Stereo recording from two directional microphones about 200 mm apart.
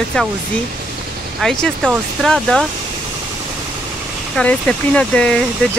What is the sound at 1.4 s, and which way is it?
Speech, 5° left (ahead or behind).